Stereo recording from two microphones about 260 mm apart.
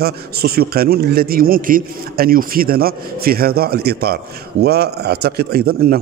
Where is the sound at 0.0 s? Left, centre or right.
Right.